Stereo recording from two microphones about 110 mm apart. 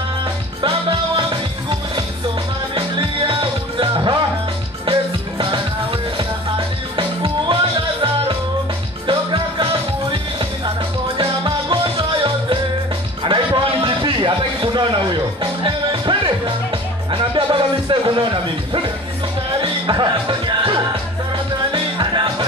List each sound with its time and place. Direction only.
0.6 s music: 50° right (ahead or behind)
2.7 s music: 50° right (ahead or behind)
7.0 s music: 50° right (ahead or behind)
9.0 s music: 50° right (ahead or behind)
11.1 s music: 50° right (ahead or behind)
13.2 s a sound: 45° right (ahead or behind)
15.6 s music: 45° right (ahead or behind)
17.1 s a sound: 50° right (ahead or behind)
19.6 s music: 45° right (ahead or behind)